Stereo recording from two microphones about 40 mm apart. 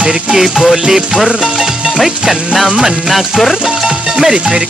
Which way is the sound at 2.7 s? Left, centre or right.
Centre.